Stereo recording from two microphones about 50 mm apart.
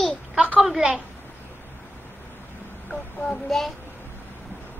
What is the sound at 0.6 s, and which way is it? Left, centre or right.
Speech, centre.